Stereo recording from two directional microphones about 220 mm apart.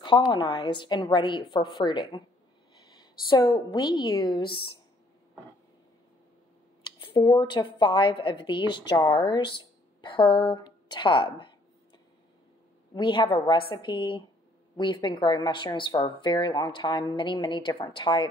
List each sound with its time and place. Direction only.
0.3 s speech: 20° left (ahead or behind)
3.3 s speech: 20° left (ahead or behind)
7.0 s a woman's voice: 20° left (ahead or behind)